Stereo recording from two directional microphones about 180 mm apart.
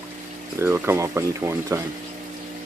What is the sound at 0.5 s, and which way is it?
Speech, 15° right (ahead or behind).